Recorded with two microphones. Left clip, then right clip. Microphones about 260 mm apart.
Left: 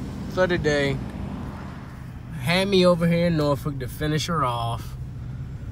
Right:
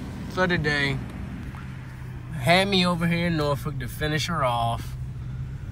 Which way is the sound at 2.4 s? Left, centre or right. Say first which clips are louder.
Left 1 dB; centre.